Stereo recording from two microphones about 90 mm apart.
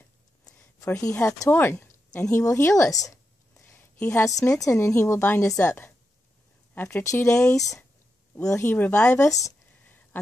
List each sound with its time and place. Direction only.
1.5 s speech: 25° left (ahead or behind)
2.3 s a sound: 30° left (ahead or behind)
4.2 s a woman's voice: 35° left (ahead or behind)
8.6 s speech: 20° left (ahead or behind)
9.2 s a woman's voice: 35° left (ahead or behind)